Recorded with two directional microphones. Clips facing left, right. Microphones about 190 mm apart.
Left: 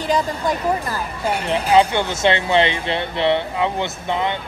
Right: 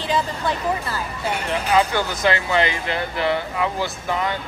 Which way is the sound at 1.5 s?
25° left (ahead or behind).